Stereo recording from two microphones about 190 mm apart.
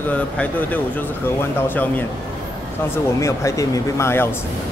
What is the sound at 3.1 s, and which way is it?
Speech, 15° left (ahead or behind).